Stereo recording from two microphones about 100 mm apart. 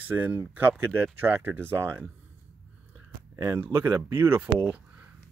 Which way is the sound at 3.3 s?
30° right (ahead or behind).